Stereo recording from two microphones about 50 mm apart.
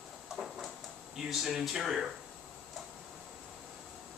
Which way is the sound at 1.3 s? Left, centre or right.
Centre.